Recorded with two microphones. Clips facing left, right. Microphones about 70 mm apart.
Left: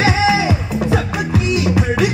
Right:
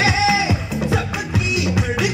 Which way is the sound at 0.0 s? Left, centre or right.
Left.